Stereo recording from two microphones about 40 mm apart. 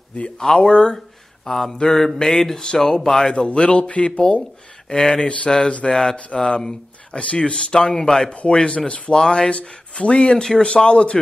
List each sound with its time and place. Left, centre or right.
0.6 s speech: left
0.9 s speech: centre
2.1 s mantra: centre
3.3 s speech: left
4.8 s mantra: centre
6.3 s speech: centre
7.9 s mantra: centre
8.3 s speech: left
10.4 s mantra: centre
10.7 s speech: left